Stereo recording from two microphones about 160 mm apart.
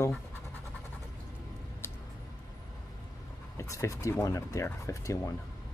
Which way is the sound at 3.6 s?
20° left (ahead or behind).